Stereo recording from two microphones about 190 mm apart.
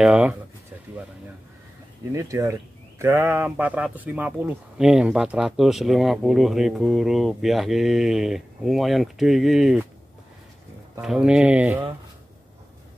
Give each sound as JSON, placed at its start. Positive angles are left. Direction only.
{"t": 0.0, "sound": "speech", "side_deg": -5}
{"t": 2.1, "sound": "speech", "side_deg": -15}
{"t": 11.0, "sound": "speech", "side_deg": -5}